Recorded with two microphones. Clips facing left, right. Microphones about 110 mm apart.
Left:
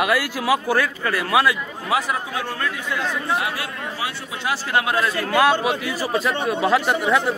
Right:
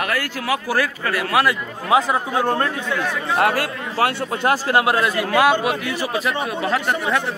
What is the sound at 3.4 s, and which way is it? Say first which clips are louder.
Speech: right 7 dB; 65° right (ahead or behind).